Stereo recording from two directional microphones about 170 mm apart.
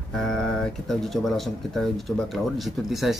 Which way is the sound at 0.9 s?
Centre (ahead or behind).